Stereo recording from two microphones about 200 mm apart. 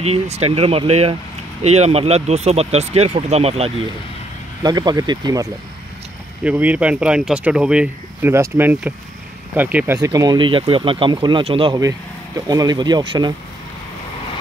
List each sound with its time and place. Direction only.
0.0 s speech: 30° right (ahead or behind)
4.6 s speech: 20° right (ahead or behind)
6.4 s speech: 10° right (ahead or behind)